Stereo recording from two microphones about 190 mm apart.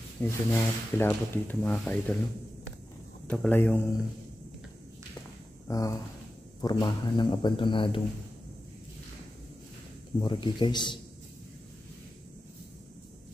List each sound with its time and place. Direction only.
0.2 s speech: 10° left (ahead or behind)
3.3 s speech: 10° left (ahead or behind)
5.7 s speech: 20° left (ahead or behind)
10.2 s speech: 25° left (ahead or behind)